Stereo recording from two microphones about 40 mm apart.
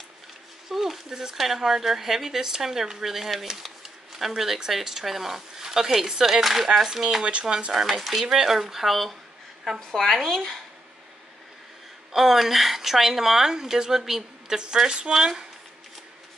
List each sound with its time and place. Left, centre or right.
0.7 s speech: centre
8.0 s speech: centre
12.1 s speech: centre